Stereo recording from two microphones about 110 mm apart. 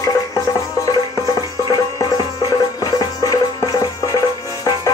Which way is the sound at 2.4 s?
35° left (ahead or behind).